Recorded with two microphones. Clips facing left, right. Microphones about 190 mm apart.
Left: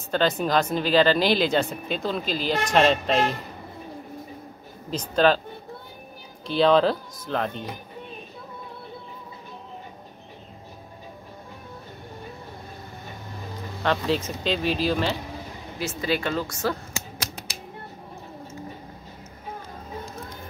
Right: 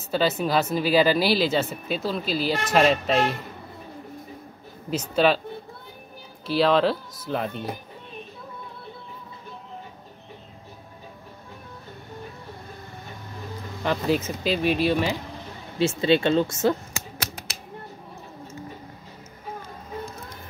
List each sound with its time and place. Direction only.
0.1 s speech: 5° right (ahead or behind)
4.9 s speech: 5° right (ahead or behind)
6.4 s speech: 5° right (ahead or behind)
13.8 s speech: 5° right (ahead or behind)
15.8 s speech: 25° right (ahead or behind)
17.5 s a sound: 60° right (ahead or behind)